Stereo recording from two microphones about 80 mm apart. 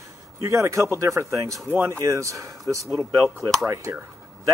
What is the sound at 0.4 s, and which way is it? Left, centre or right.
Speech, right.